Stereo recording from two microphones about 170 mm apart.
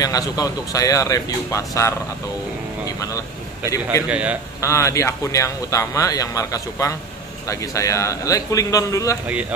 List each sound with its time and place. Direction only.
0.0 s speech: 20° left (ahead or behind)
4.1 s a man's voice: 10° right (ahead or behind)
4.6 s speech: 15° left (ahead or behind)